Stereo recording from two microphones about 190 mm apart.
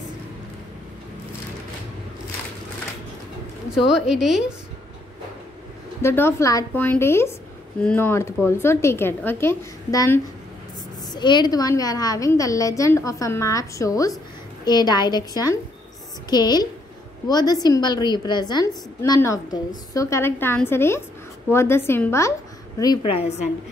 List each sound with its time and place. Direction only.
3.9 s a woman's voice: centre (ahead or behind)
6.0 s a woman's voice: 10° left (ahead or behind)
22.8 s a woman's voice: 25° left (ahead or behind)